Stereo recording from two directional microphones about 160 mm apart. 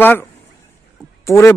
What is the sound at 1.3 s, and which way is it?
Speech, 15° left (ahead or behind).